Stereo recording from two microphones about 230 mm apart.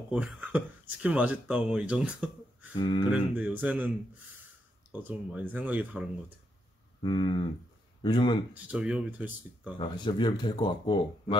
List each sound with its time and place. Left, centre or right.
0.1 s speech: centre
2.7 s speech: centre
3.3 s speech: centre
5.0 s speech: centre
7.0 s speech: left
8.6 s speech: centre
9.8 s speech: centre